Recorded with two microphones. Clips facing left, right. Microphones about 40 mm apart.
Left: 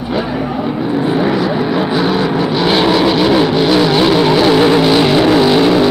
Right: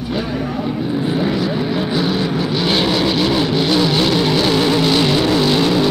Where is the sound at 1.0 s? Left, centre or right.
Centre.